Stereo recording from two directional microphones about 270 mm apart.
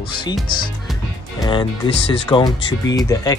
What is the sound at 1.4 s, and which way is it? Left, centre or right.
Speech, centre.